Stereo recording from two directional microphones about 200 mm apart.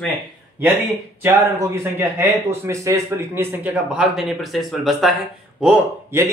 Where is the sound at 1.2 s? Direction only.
15° right (ahead or behind).